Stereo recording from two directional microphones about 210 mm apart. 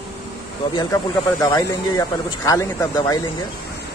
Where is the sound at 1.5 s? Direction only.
20° left (ahead or behind).